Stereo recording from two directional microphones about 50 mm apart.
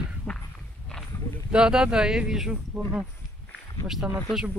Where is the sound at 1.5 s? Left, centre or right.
Centre.